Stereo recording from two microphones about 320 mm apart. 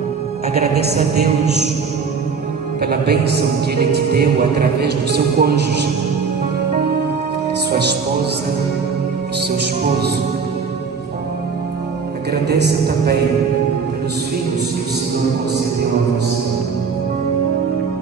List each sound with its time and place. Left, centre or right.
0.6 s speech: right
2.8 s speech: right
12.8 s speech: right